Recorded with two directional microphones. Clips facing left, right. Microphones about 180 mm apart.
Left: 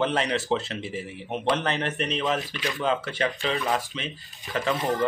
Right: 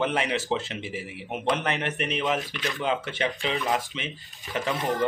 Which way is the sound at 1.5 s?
35° left (ahead or behind).